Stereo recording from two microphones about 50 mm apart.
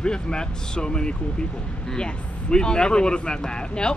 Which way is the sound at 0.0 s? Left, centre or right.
Centre.